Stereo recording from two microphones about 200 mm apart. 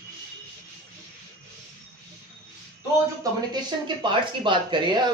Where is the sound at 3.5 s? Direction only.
25° right (ahead or behind).